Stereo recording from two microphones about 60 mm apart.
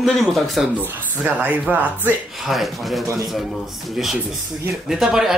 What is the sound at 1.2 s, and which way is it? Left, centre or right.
Speech, right.